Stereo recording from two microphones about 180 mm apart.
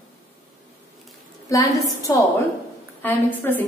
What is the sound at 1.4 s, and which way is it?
Speech, 20° left (ahead or behind).